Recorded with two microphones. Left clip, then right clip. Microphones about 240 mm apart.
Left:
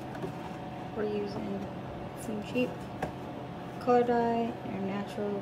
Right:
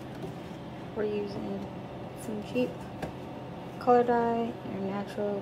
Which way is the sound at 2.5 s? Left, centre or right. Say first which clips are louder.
Right 1 dB; centre.